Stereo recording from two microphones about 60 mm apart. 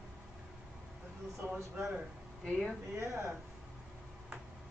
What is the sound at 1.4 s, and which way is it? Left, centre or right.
Speech, right.